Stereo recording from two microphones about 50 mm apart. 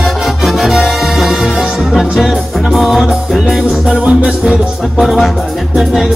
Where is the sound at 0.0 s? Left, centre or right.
Centre.